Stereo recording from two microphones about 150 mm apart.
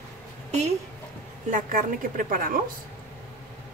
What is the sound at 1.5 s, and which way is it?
Speech, 65° right (ahead or behind).